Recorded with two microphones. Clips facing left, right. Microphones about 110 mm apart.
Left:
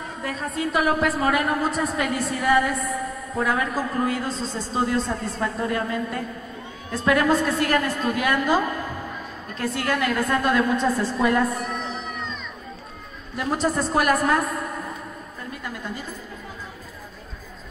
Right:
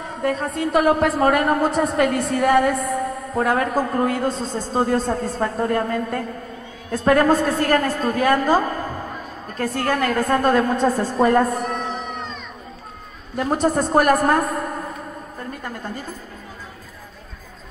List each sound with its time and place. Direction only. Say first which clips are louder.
0.6 s a woman's voice: right 4 dB; 60° right (ahead or behind)
13.4 s a man's voice: right 4 dB; 50° right (ahead or behind)